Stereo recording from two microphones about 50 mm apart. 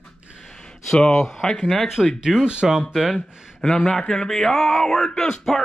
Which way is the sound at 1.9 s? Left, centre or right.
Centre.